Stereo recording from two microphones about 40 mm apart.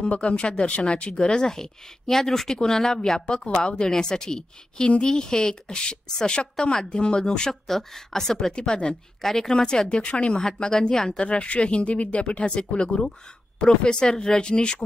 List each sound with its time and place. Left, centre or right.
0.1 s a woman's voice: left; by 3.0 s centre
3.3 s a woman's voice: left
7.6 s speech: centre
8.5 s a woman's voice: centre
10.7 s a woman's voice: centre